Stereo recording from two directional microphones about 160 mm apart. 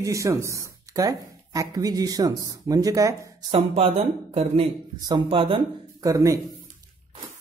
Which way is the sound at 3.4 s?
35° right (ahead or behind).